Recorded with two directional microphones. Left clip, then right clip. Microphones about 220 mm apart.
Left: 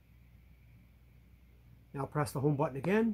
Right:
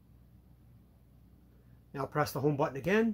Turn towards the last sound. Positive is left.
turn(degrees=15)  # may be behind; listen again after turning